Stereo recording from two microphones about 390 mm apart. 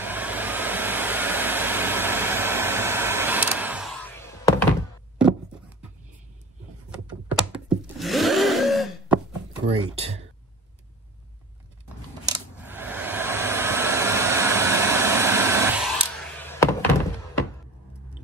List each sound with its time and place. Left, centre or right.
0.0 s hair dryer: centre
6.9 s blender: centre
9.9 s a sound: centre
12.3 s hair dryer: centre